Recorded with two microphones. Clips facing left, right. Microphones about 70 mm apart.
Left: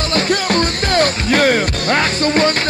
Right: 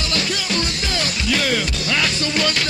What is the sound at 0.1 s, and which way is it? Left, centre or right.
Music, left.